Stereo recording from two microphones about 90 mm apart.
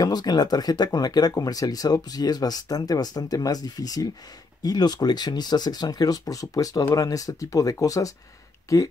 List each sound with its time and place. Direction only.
0.0 s speech: 50° left (ahead or behind)